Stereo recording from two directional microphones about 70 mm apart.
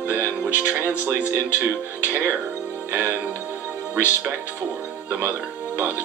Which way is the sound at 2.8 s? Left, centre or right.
Right.